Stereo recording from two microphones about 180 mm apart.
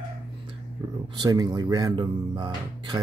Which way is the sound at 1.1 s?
20° right (ahead or behind).